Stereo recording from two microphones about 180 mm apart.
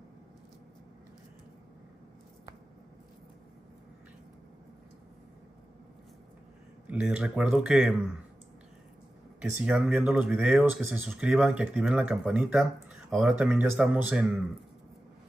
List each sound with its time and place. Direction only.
6.9 s speech: 5° right (ahead or behind)
9.6 s speech: 5° right (ahead or behind)